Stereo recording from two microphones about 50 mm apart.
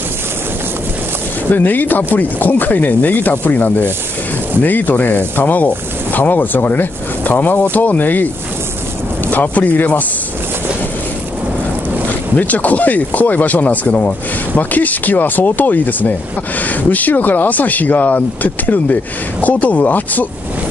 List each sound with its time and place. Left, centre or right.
1.5 s speech: left
12.4 s speech: left